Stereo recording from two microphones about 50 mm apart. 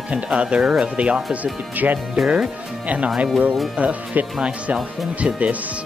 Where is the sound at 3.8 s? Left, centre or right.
Right.